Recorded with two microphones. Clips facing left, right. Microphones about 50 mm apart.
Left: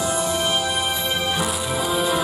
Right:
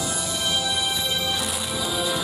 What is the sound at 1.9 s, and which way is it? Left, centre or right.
Music, left.